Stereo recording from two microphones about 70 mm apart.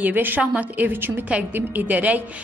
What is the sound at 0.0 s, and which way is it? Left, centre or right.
A woman's voice, right.